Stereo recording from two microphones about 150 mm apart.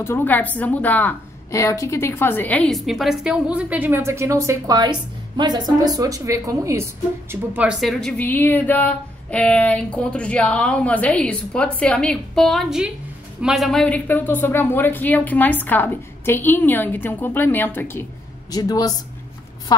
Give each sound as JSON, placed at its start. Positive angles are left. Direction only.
{"t": 0.0, "sound": "a woman's voice", "side_deg": 15}
{"t": 7.8, "sound": "speech", "side_deg": 0}
{"t": 18.5, "sound": "speech", "side_deg": 25}